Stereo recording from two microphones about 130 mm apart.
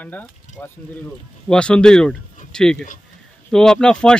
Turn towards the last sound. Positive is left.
turn(degrees=5)  # may be behind; listen again after turning